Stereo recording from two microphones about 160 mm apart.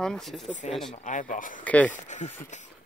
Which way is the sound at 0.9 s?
50° left (ahead or behind).